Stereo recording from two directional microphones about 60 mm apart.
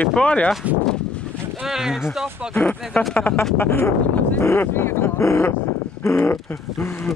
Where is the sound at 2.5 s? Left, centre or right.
Left.